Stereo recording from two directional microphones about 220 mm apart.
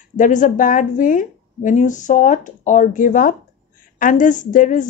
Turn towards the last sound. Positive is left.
turn(degrees=35)  # may be behind; listen again after turning